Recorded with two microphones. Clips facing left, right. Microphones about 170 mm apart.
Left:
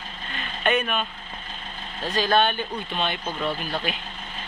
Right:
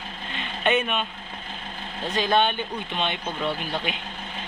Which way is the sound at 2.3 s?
20° right (ahead or behind).